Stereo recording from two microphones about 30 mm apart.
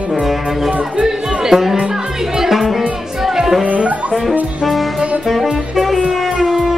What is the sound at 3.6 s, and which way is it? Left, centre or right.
Music, right.